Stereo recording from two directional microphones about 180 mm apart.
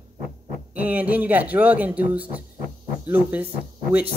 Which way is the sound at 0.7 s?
10° right (ahead or behind).